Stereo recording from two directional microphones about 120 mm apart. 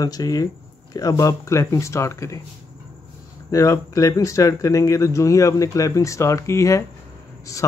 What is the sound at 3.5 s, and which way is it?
Speech, 25° left (ahead or behind).